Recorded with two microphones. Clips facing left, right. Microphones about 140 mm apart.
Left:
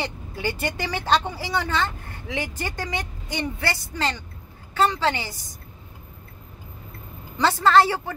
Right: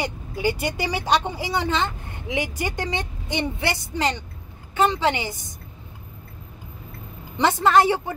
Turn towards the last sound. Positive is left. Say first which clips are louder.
# even
turn(degrees=-15)  # may be behind; listen again after turning